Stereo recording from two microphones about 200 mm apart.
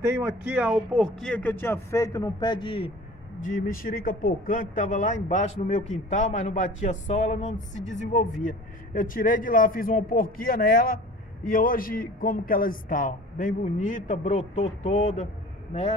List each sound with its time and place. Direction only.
0.0 s speech: 10° right (ahead or behind)
1.2 s a man's voice: 5° left (ahead or behind); by 2.9 s 25° left (ahead or behind)
3.4 s speech: 45° left (ahead or behind)